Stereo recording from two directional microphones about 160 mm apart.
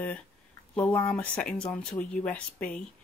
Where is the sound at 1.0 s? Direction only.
5° left (ahead or behind).